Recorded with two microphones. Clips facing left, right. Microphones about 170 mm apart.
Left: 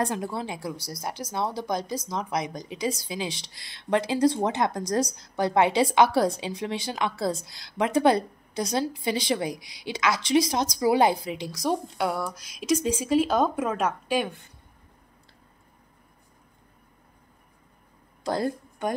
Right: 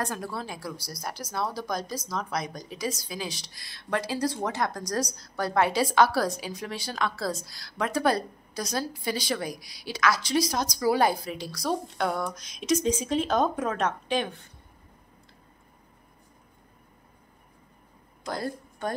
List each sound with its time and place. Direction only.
0.0 s a woman's voice: 20° left (ahead or behind)
18.4 s a woman's voice: 15° left (ahead or behind)